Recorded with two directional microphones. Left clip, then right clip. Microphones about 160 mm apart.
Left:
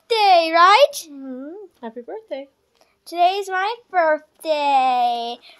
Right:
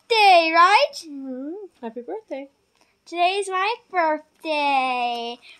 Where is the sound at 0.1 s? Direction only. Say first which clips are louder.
Even; centre (ahead or behind).